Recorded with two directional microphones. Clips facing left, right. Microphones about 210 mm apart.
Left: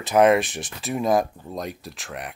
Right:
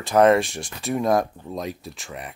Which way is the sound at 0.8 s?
Centre (ahead or behind).